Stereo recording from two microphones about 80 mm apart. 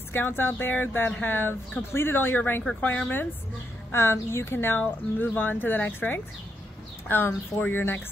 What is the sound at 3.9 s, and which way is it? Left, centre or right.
Speech, left.